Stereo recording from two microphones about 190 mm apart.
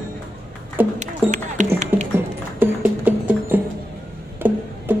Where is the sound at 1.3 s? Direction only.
40° right (ahead or behind).